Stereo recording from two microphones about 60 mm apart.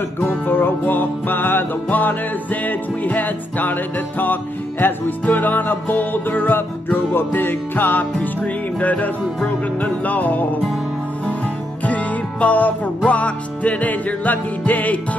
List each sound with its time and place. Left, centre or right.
0.2 s music: left
11.8 s music: left